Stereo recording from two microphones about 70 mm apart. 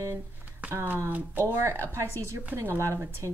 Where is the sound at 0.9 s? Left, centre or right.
Right.